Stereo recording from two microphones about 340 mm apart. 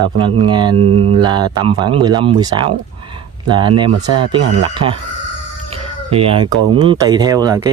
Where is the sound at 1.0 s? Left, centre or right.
Centre.